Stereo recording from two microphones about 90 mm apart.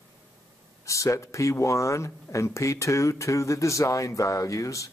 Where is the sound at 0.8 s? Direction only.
35° left (ahead or behind).